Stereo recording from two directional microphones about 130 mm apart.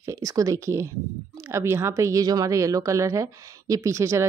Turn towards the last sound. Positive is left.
turn(degrees=-25)  # may be behind; listen again after turning